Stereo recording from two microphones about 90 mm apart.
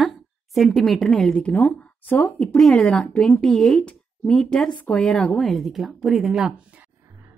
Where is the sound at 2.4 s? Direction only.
5° left (ahead or behind).